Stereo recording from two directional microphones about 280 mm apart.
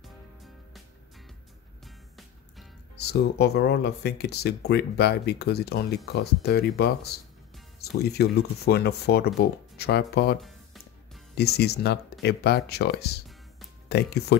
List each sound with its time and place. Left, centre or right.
0.0 s music: centre
3.0 s speech: left
11.3 s speech: left